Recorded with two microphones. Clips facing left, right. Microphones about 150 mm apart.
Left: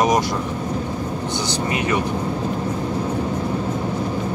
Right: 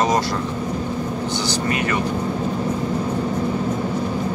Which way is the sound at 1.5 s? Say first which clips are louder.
Even; 20° left (ahead or behind).